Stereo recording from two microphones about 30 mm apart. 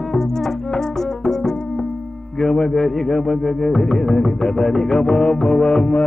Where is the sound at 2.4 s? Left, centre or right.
Centre.